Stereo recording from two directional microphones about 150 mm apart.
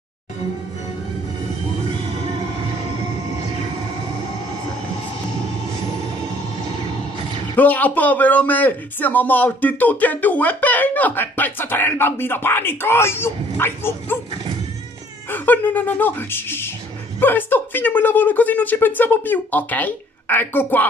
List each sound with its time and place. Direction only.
7.5 s a man's voice: 10° left (ahead or behind)
15.2 s a man's voice: 10° left (ahead or behind)